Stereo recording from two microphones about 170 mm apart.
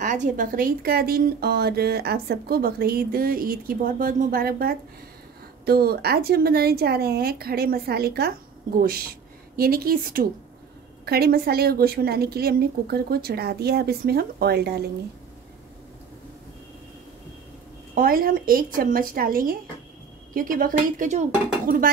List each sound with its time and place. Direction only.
0.0 s speech: 50° right (ahead or behind); by 14.9 s 70° right (ahead or behind)
17.9 s speech: 60° right (ahead or behind)
21.6 s speech: 55° right (ahead or behind)